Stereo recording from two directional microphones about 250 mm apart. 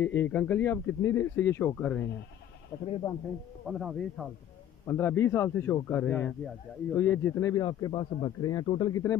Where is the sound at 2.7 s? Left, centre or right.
Centre.